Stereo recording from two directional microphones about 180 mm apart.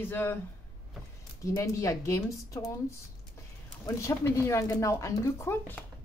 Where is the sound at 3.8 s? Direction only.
15° left (ahead or behind).